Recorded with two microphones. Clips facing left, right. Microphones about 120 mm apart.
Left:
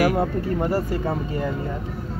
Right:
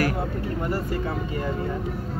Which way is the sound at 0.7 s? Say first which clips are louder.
Left 4 dB; 35° left (ahead or behind).